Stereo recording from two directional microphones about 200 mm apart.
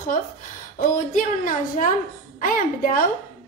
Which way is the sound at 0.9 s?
40° left (ahead or behind).